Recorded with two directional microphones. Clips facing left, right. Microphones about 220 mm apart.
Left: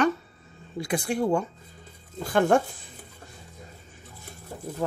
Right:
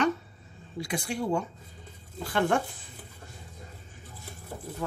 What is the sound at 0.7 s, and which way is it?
Speech, 50° left (ahead or behind).